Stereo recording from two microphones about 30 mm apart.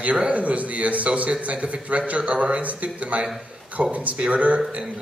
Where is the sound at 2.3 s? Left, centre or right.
Right.